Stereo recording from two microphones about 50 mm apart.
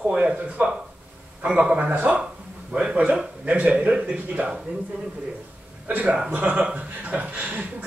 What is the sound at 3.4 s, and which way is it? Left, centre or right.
A man's voice, right.